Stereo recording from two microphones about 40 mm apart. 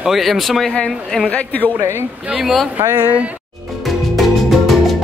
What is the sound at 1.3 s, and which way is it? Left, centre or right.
Speech, left.